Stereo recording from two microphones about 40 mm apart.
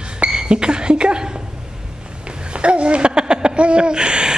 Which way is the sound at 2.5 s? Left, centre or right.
Right.